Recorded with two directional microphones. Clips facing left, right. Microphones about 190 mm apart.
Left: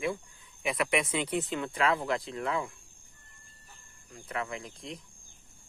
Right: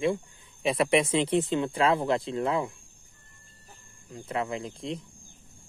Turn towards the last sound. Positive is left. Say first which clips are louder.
# right 7 dB
turn(degrees=-30)  # may be behind; listen again after turning